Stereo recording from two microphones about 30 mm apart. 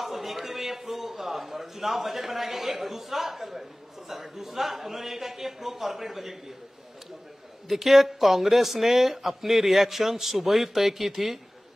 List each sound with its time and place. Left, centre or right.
0.0 s a sound: centre
4.1 s speech: centre
7.6 s speech: centre